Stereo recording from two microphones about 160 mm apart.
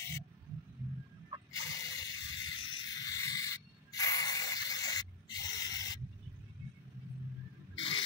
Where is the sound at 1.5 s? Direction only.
20° left (ahead or behind).